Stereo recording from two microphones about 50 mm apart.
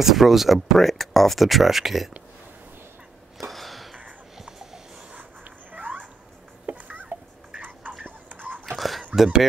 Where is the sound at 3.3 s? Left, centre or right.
Centre.